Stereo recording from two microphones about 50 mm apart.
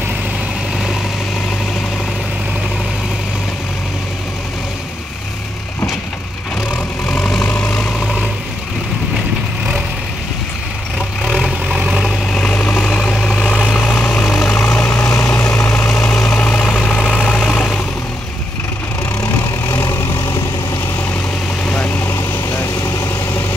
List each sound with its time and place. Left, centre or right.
7.4 s vehicle: centre
12.3 s vehicle: centre
13.8 s vehicle: left
14.6 s vehicle: left
16.4 s vehicle: centre
16.9 s vehicle: left
22.0 s vehicle: left